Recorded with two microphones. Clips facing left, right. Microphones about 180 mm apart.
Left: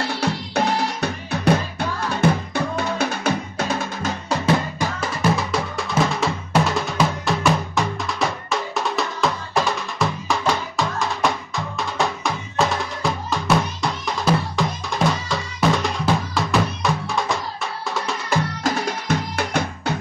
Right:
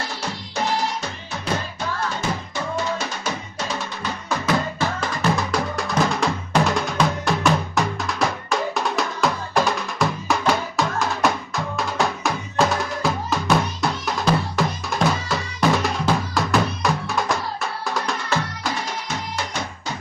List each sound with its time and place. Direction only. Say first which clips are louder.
1.0 s music: left 8 dB; 65° left (ahead or behind)
4.7 s music: even; 10° left (ahead or behind)
18.6 s music: left 4 dB; 60° left (ahead or behind)